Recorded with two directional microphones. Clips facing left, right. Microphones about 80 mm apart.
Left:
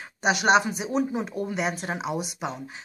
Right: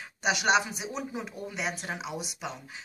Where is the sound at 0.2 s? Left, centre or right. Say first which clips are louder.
Left 5 dB; left.